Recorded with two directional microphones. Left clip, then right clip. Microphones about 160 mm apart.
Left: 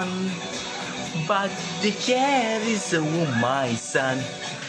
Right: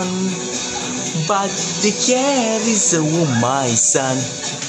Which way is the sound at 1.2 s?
15° right (ahead or behind).